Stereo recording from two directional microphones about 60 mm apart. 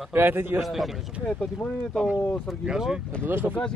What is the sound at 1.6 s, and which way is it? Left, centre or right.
Speech, centre.